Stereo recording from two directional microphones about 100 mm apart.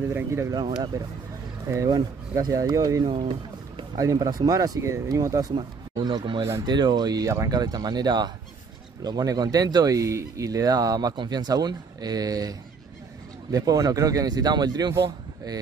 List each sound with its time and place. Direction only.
0.1 s speech: 25° right (ahead or behind)
0.5 s speech: 45° right (ahead or behind)
5.5 s speech: 50° right (ahead or behind)